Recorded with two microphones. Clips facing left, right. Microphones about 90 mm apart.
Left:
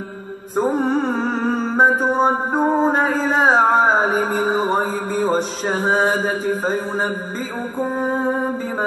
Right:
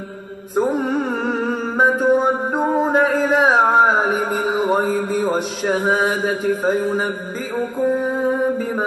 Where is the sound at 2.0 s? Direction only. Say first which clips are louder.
Right 1 dB; 35° left (ahead or behind).